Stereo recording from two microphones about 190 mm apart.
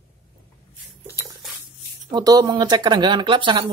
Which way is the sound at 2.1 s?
20° right (ahead or behind).